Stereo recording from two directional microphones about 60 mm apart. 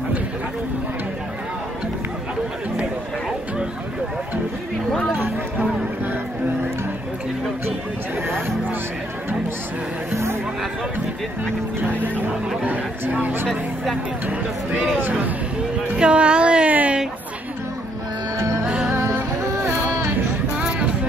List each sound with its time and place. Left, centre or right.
5.1 s a sound: right
12.6 s speech: right
15.0 s speech: right
16.0 s a sound: centre
18.4 s music: right
20.5 s vehicle: centre